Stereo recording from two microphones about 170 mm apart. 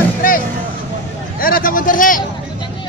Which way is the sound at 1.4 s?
55° left (ahead or behind).